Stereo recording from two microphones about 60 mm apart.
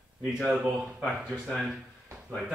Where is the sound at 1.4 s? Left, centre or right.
Centre.